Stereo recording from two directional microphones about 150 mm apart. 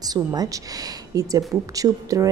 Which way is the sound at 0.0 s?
25° right (ahead or behind).